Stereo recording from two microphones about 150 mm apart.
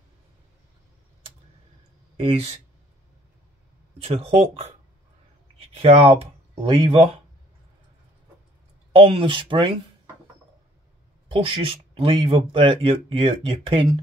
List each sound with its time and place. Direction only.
2.1 s speech: 45° right (ahead or behind)
4.0 s speech: 40° right (ahead or behind)
5.8 s speech: 40° right (ahead or behind)
8.9 s speech: 40° right (ahead or behind)
11.2 s speech: 35° right (ahead or behind)